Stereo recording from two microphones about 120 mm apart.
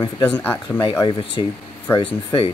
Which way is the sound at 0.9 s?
40° left (ahead or behind).